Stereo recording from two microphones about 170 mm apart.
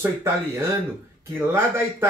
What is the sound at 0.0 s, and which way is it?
Speech, 15° right (ahead or behind).